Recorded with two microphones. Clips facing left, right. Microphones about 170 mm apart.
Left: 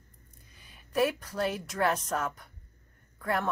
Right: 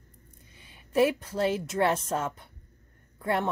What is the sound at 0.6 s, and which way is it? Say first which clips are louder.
A woman's voice: right 4 dB; 25° right (ahead or behind).